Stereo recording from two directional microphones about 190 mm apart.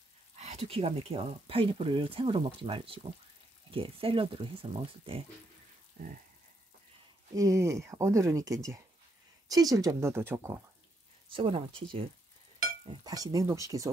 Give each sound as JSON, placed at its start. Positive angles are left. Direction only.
{"t": 0.4, "sound": "speech", "side_deg": -35}
{"t": 7.3, "sound": "speech", "side_deg": -15}
{"t": 11.2, "sound": "speech", "side_deg": -30}